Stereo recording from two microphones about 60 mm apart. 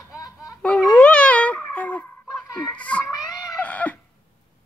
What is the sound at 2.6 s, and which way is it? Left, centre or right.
Speech, left.